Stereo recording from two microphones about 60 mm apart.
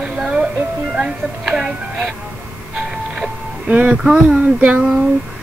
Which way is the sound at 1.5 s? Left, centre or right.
Centre.